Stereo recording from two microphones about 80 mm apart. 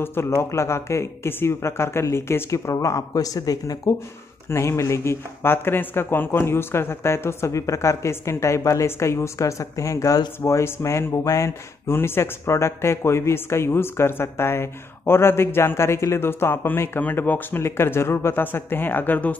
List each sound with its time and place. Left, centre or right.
0.0 s speech: left
4.5 s speech: left